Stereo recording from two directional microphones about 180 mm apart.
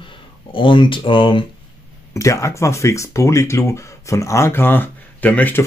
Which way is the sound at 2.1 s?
15° left (ahead or behind).